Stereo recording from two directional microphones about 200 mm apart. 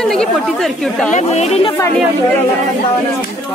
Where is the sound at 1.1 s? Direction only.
35° left (ahead or behind).